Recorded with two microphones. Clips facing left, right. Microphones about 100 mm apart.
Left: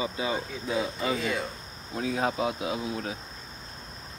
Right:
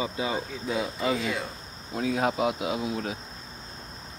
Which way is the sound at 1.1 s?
Centre (ahead or behind).